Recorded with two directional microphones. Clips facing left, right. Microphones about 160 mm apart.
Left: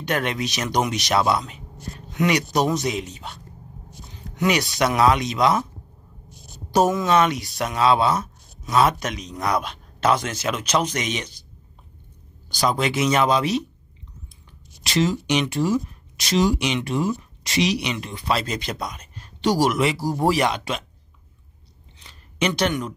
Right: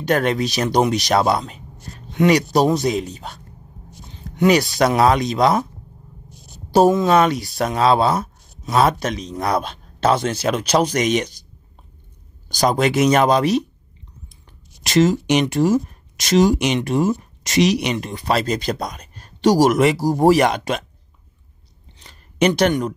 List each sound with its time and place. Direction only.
0.0 s speech: 40° right (ahead or behind)
4.4 s speech: 35° right (ahead or behind)
6.7 s speech: 30° right (ahead or behind)
12.4 s speech: 45° right (ahead or behind)
14.8 s speech: 50° right (ahead or behind)
22.0 s a sound: 45° right (ahead or behind)